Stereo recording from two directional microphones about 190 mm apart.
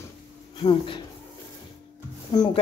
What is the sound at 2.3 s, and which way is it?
Speech, 20° left (ahead or behind).